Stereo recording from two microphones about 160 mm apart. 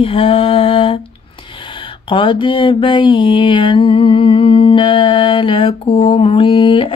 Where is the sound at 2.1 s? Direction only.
30° left (ahead or behind).